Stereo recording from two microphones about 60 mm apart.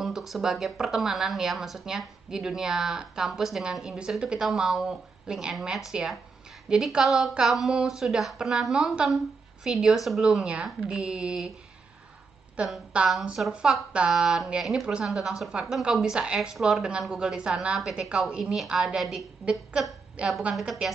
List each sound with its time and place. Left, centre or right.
0.0 s a woman's voice: centre
10.4 s speech: centre
12.6 s a woman's voice: centre
16.5 s a woman's voice: centre
20.2 s speech: centre